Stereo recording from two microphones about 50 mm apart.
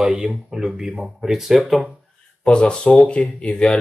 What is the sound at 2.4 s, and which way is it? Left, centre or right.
Speech, left.